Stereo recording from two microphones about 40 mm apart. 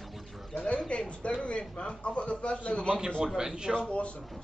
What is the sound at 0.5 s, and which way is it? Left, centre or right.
A man's voice, left.